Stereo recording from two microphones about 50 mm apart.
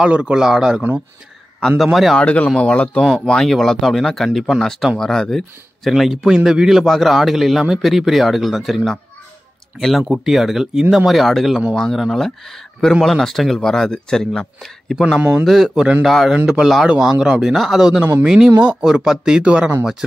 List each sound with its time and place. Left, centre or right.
0.0 s a man's voice: centre
2.1 s speech: left
3.1 s a man's voice: centre
6.3 s a man's voice: centre
11.1 s a man's voice: centre
16.4 s speech: centre